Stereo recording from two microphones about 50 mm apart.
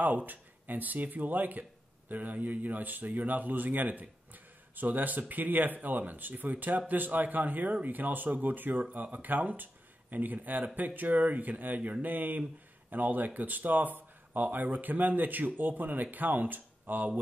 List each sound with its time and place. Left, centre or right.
0.0 s speech: right